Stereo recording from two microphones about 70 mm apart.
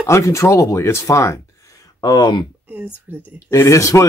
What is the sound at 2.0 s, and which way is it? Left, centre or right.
Speech, left.